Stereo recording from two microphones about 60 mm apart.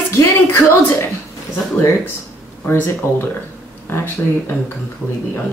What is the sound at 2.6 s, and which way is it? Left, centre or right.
Speech, left.